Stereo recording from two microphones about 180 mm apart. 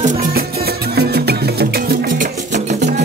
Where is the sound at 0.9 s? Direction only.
65° right (ahead or behind).